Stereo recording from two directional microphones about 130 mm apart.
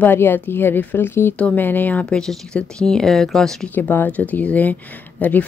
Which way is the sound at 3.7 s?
15° left (ahead or behind).